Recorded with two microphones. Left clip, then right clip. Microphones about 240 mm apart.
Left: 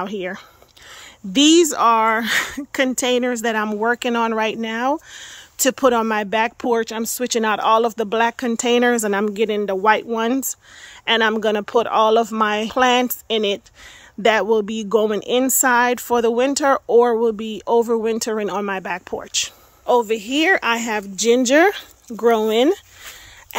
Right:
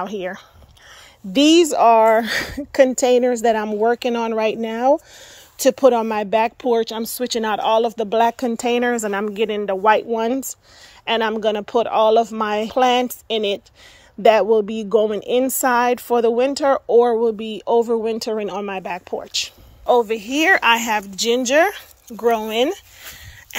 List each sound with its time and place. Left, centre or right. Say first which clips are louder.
0.0 s a woman's voice: even; left